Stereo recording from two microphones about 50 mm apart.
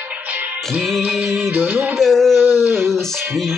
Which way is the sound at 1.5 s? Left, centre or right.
Right.